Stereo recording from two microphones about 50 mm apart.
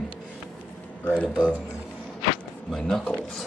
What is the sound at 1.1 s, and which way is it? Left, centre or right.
Speech, centre.